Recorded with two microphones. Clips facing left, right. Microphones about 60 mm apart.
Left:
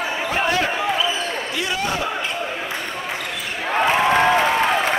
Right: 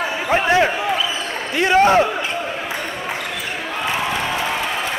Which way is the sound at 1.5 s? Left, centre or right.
Right.